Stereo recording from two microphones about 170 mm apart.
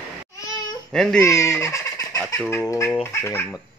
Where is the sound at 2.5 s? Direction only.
15° left (ahead or behind).